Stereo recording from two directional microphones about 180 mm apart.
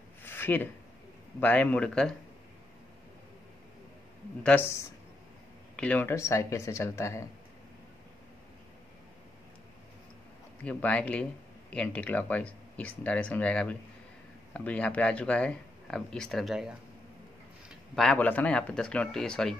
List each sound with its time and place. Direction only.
0.2 s a sound: 10° left (ahead or behind)
1.4 s speech: 10° left (ahead or behind)
4.4 s speech: 10° left (ahead or behind)
10.6 s speech: 10° left (ahead or behind)
17.9 s speech: 5° left (ahead or behind)